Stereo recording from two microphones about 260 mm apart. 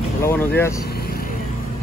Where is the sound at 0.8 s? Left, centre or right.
Left.